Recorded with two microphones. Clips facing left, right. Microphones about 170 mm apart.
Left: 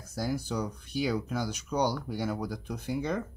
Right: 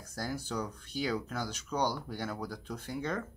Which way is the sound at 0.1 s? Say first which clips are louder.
Left 5 dB; 10° left (ahead or behind).